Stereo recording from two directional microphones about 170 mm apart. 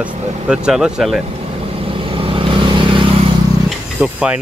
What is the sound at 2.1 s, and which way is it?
Vehicle, 30° right (ahead or behind).